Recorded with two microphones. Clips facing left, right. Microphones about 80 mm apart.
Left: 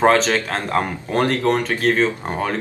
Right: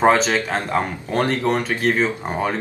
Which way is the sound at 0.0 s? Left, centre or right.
Centre.